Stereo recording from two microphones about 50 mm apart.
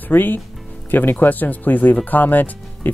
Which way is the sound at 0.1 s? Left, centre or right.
Left.